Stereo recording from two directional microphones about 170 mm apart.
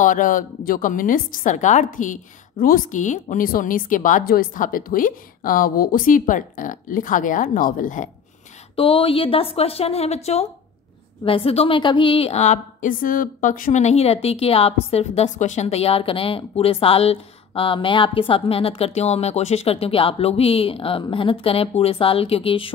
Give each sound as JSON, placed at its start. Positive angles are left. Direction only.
{"t": 0.0, "sound": "a woman's voice", "side_deg": 50}
{"t": 8.7, "sound": "a woman's voice", "side_deg": 30}